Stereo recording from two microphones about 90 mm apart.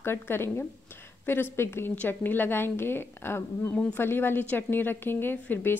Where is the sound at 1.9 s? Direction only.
20° left (ahead or behind).